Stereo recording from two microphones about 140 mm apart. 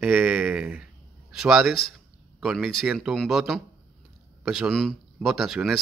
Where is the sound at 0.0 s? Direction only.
5° right (ahead or behind).